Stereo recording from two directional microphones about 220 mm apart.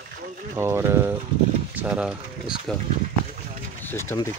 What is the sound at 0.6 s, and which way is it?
Speech, 10° right (ahead or behind).